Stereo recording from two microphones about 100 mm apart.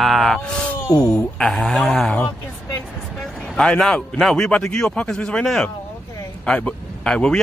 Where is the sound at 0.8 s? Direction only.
35° left (ahead or behind).